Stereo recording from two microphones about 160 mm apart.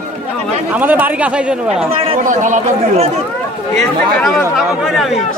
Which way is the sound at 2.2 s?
50° right (ahead or behind).